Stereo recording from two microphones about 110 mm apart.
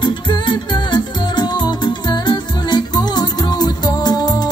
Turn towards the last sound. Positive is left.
turn(degrees=35)  # may be behind; listen again after turning